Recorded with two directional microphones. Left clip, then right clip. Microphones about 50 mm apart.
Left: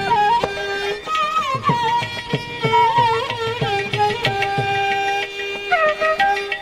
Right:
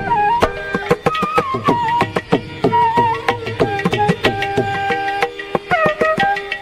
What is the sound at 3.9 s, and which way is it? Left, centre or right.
Tabla, right.